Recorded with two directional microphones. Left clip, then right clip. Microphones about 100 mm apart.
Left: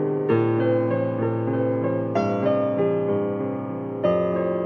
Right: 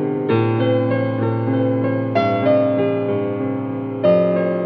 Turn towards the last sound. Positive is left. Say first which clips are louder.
# right 6 dB
turn(degrees=-35)  # may be behind; listen again after turning